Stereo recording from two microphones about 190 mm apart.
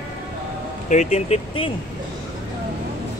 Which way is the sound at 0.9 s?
35° left (ahead or behind).